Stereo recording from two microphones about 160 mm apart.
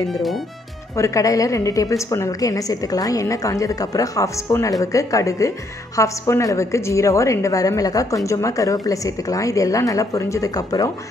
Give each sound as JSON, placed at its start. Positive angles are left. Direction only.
{"t": 0.0, "sound": "speech", "side_deg": 0}
{"t": 0.9, "sound": "a woman's voice", "side_deg": 20}